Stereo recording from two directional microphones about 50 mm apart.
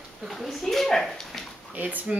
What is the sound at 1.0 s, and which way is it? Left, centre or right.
Bathtub, centre.